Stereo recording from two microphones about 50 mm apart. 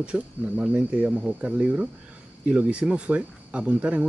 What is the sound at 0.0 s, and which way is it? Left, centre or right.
Speech, right.